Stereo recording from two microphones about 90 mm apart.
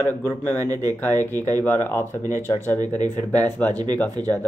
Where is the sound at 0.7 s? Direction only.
40° right (ahead or behind).